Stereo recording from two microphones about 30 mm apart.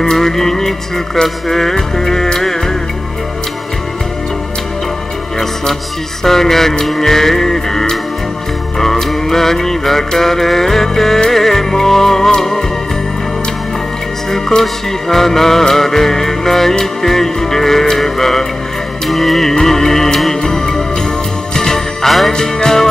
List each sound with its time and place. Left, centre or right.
0.0 s music: centre
6.2 s music: centre
9.3 s music: centre
14.6 s music: centre
22.6 s music: centre